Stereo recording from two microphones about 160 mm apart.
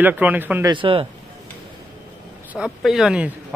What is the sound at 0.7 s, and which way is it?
Speech, 35° right (ahead or behind).